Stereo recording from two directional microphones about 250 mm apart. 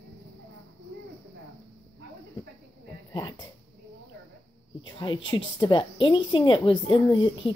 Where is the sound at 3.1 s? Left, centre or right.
Centre.